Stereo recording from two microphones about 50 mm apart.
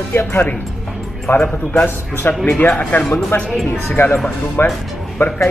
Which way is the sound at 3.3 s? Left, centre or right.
Left.